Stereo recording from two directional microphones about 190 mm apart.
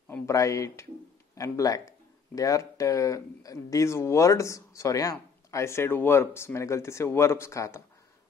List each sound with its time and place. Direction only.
0.1 s speech: 15° left (ahead or behind)